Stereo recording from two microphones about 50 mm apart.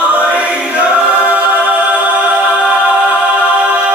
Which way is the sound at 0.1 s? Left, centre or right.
Right.